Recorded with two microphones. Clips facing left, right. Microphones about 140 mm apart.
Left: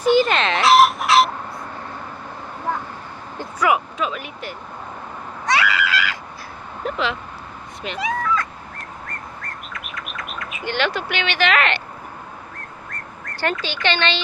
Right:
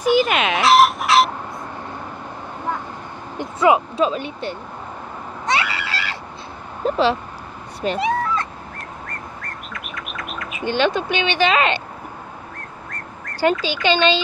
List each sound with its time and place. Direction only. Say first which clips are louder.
0.0 s dog: even; 5° right (ahead or behind)
3.3 s speech: right 4 dB; 25° right (ahead or behind)
5.5 s screaming: left 3 dB; 30° right (ahead or behind)
6.8 s vehicle: right 6 dB; 30° right (ahead or behind)
8.7 s chirp: even; centre (ahead or behind)
10.8 s speech: right 4 dB; 20° right (ahead or behind)
12.5 s whistling: right 1 dB; centre (ahead or behind)
13.4 s speech: right 5 dB; 10° right (ahead or behind)